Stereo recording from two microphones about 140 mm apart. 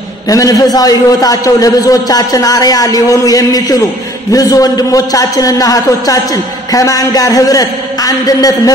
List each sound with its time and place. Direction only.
0.3 s a man's voice: 25° left (ahead or behind)